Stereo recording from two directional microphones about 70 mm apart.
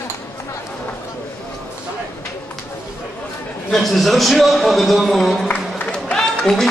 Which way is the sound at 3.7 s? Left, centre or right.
Centre.